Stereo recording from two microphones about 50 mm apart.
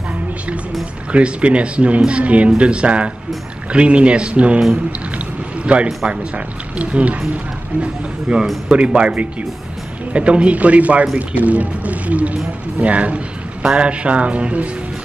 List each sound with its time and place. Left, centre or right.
1.1 s speech: right
5.7 s speech: right